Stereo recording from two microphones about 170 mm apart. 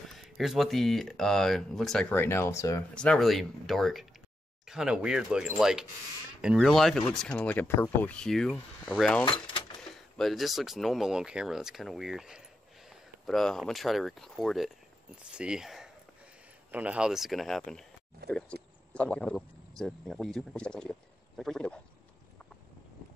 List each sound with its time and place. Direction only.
0.2 s speech: centre (ahead or behind); by 2.8 s 20° left (ahead or behind)
2.9 s speech: 5° left (ahead or behind)
9.2 s speech: 30° left (ahead or behind)
9.8 s speech: centre (ahead or behind)